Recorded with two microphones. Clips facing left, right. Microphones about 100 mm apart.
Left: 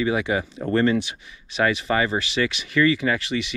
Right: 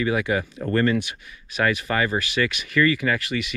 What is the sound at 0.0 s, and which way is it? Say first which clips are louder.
Speech: even; 25° left (ahead or behind).